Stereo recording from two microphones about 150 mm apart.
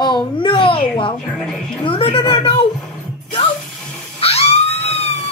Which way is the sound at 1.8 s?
35° left (ahead or behind).